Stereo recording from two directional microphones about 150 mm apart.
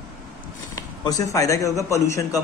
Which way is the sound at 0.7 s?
25° left (ahead or behind).